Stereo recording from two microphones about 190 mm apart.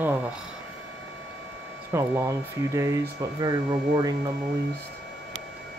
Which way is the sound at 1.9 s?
15° right (ahead or behind).